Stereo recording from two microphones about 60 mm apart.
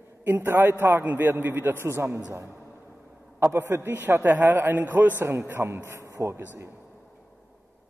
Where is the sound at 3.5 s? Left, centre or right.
Right.